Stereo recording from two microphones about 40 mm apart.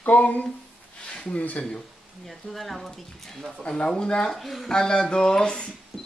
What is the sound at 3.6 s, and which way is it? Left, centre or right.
Speech, left.